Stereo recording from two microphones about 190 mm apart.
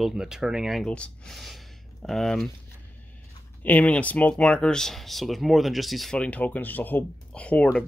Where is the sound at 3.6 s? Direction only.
10° left (ahead or behind).